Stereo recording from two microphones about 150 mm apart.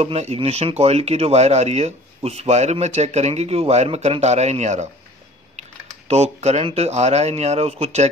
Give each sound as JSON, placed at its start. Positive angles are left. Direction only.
{"t": 0.0, "sound": "speech", "side_deg": -45}